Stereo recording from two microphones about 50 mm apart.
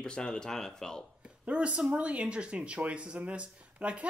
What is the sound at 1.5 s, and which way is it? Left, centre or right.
Speech, right.